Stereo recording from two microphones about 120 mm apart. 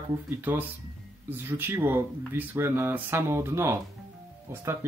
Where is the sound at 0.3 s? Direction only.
15° right (ahead or behind).